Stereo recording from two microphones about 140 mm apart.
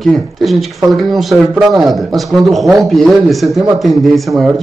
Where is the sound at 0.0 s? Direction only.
Centre (ahead or behind).